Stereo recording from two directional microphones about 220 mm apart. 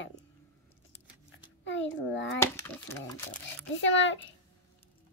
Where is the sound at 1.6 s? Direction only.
55° left (ahead or behind).